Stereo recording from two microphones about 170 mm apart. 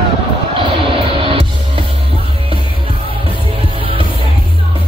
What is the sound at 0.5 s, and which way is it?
Music, 30° right (ahead or behind).